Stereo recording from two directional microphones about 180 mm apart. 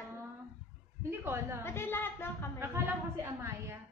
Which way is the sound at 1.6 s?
15° left (ahead or behind).